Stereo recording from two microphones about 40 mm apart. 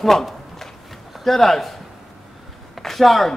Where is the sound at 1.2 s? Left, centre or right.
Centre.